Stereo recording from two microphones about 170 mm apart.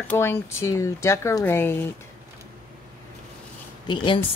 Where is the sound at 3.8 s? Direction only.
30° left (ahead or behind).